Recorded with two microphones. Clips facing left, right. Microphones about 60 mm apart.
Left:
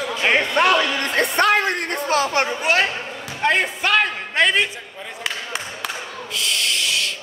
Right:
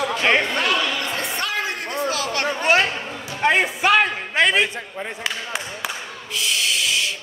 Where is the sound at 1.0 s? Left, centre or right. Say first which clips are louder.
Left 7 dB; left.